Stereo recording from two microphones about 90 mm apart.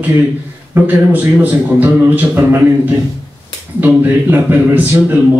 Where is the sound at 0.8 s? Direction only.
20° right (ahead or behind).